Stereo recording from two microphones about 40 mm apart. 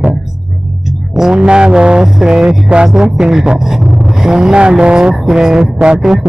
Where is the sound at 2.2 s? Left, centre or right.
Centre.